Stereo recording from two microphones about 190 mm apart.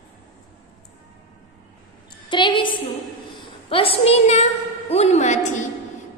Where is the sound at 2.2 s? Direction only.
25° left (ahead or behind); by 5.7 s 40° left (ahead or behind).